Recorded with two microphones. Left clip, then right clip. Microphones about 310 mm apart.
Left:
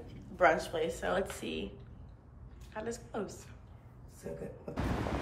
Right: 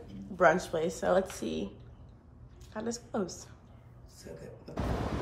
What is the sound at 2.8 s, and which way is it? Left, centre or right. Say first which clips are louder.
Speech: right 3 dB; centre.